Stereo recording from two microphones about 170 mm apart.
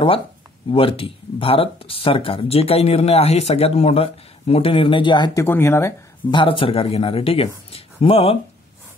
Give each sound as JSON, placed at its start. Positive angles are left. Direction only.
{"t": 0.7, "sound": "speech", "side_deg": 30}
{"t": 5.4, "sound": "speech", "side_deg": 15}
{"t": 6.3, "sound": "speech", "side_deg": 30}